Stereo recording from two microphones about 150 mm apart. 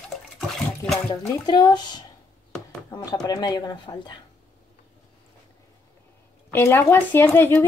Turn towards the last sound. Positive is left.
turn(degrees=10)  # may be behind; listen again after turning